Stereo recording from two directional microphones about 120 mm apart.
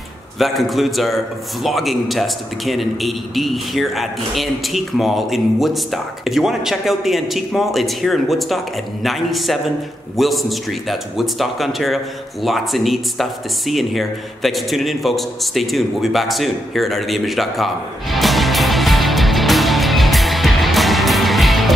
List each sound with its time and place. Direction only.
0.4 s a man's voice: centre (ahead or behind)
18.1 s music: centre (ahead or behind)